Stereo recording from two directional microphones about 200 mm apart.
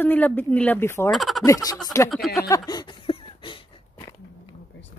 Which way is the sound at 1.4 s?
15° left (ahead or behind).